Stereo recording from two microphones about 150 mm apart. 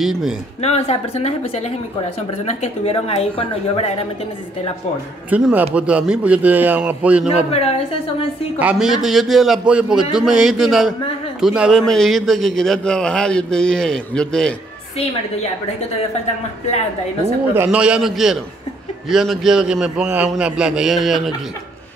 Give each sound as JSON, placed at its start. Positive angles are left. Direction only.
{"t": 0.0, "sound": "a man's voice", "side_deg": 0}
{"t": 0.6, "sound": "speech", "side_deg": 45}
{"t": 5.3, "sound": "a man's voice", "side_deg": -10}
{"t": 7.5, "sound": "speech", "side_deg": 40}
{"t": 8.5, "sound": "a man's voice", "side_deg": -5}
{"t": 17.6, "sound": "a man's voice", "side_deg": -5}